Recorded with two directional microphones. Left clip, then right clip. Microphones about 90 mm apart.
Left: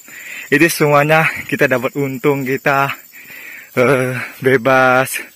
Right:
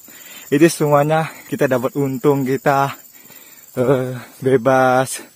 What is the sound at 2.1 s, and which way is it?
Speech, 40° right (ahead or behind).